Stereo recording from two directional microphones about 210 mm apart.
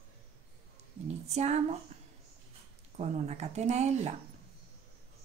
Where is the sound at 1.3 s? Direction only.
30° right (ahead or behind).